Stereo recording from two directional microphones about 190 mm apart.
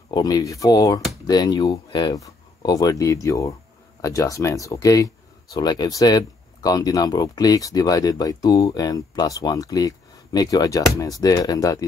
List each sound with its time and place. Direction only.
0.1 s speech: 20° left (ahead or behind)